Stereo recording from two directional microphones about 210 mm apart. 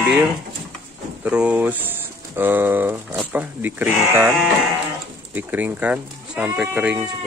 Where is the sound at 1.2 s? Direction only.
5° right (ahead or behind).